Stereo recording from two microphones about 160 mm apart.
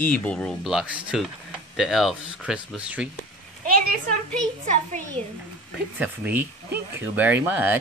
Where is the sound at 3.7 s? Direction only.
60° right (ahead or behind).